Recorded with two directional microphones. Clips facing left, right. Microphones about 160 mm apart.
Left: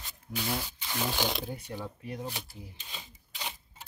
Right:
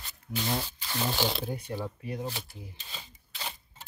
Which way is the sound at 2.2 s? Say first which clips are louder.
Right 2 dB; 15° left (ahead or behind).